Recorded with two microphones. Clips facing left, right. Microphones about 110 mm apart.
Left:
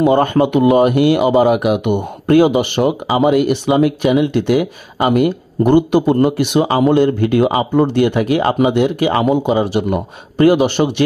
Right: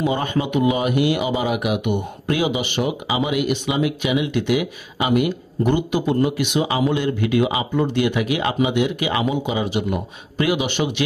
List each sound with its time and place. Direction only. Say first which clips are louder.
0.0 s speech: left 9 dB; 55° left (ahead or behind)